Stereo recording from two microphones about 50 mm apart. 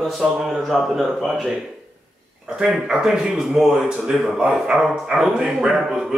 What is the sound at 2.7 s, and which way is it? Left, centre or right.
Speech, centre.